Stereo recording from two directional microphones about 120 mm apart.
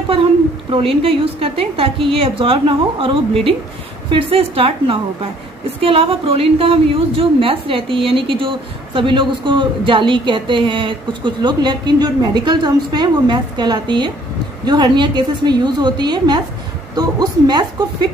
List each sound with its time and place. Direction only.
0.7 s a woman's voice: 50° right (ahead or behind); by 17.8 s 35° right (ahead or behind)